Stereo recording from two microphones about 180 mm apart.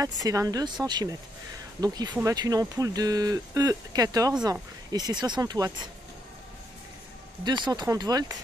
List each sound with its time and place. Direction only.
0.2 s speech: 20° right (ahead or behind)
7.4 s speech: 25° right (ahead or behind)